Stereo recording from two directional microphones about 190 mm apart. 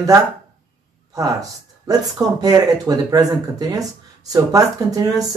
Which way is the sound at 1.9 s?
20° right (ahead or behind).